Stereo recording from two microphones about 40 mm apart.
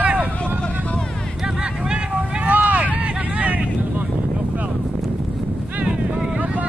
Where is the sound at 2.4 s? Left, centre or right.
Right.